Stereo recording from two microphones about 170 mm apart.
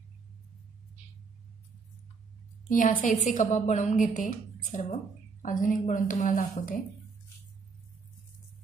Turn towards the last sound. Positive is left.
turn(degrees=55)  # may be behind; listen again after turning